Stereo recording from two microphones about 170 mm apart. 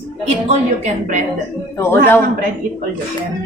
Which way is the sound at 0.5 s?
45° right (ahead or behind).